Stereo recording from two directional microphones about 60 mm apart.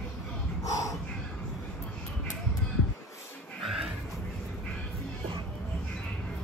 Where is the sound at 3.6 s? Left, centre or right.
Centre.